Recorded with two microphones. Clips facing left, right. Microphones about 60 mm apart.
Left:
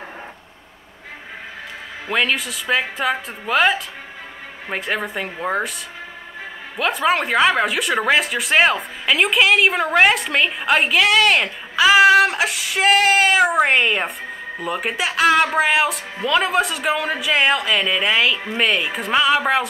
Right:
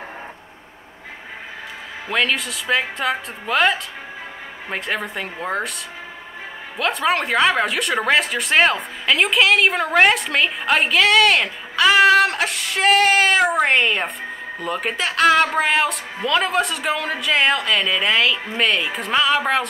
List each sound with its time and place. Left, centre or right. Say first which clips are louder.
2.0 s speech: left 1 dB; centre
6.8 s speech: left 1 dB; centre